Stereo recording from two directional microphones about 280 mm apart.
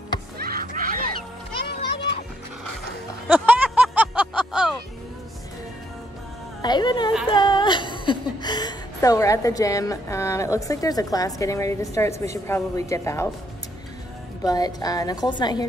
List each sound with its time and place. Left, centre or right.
0.4 s a sound: right
3.3 s music: centre
6.6 s a woman's voice: centre
14.4 s a woman's voice: centre